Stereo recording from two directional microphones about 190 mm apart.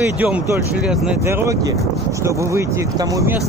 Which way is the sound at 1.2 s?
15° right (ahead or behind).